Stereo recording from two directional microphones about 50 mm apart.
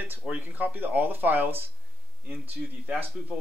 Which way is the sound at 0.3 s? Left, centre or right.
Right.